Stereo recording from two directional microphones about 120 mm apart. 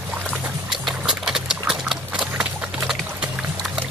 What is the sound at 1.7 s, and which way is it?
Horse, 5° right (ahead or behind).